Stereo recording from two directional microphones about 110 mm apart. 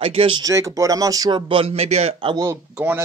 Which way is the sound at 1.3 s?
55° right (ahead or behind).